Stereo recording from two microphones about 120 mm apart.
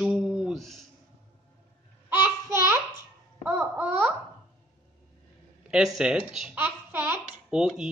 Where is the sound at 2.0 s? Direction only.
15° right (ahead or behind).